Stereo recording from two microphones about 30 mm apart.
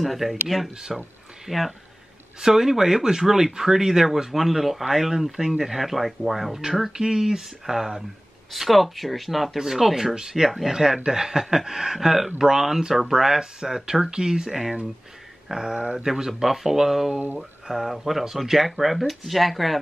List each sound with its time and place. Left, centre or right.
0.0 s speech: centre
0.7 s speech: centre
1.5 s speech: centre
2.4 s speech: centre
6.9 s speech: centre
14.5 s speech: centre